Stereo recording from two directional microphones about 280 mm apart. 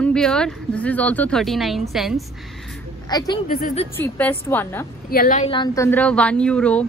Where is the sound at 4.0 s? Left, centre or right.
Centre.